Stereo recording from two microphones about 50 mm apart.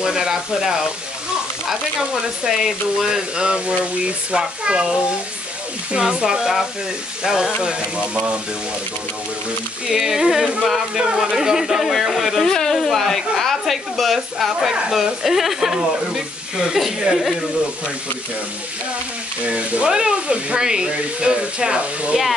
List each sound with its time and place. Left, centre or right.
0.0 s speech: centre
9.8 s speech: centre
19.4 s speech: right